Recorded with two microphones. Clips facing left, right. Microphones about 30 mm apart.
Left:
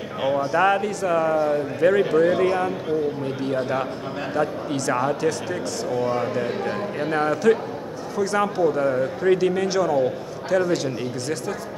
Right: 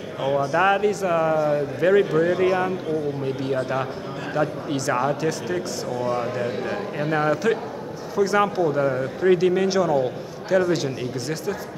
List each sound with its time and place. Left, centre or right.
0.2 s speech: left
0.6 s a man's voice: centre
5.9 s a man's voice: centre